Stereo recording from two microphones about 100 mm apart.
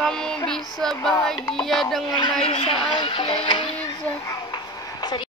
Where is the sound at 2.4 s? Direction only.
85° left.